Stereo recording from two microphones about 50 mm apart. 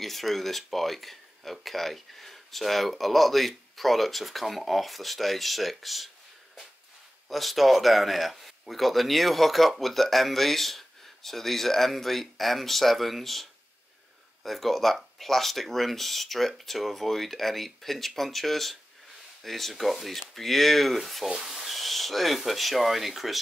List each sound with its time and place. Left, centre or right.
0.0 s speech: centre
7.2 s speech: centre
21.3 s rub: centre